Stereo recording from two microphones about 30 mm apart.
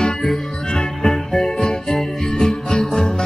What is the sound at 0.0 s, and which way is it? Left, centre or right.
Music, centre.